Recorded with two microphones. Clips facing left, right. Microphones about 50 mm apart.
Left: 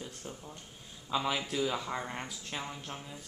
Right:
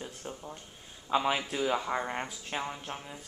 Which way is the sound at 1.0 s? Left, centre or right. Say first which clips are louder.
Right 4 dB; right.